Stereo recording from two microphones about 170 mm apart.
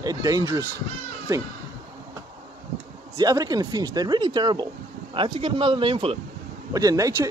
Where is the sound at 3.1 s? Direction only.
20° right (ahead or behind).